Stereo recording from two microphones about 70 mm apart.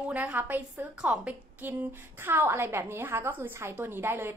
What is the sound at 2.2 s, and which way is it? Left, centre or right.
A woman's voice, right.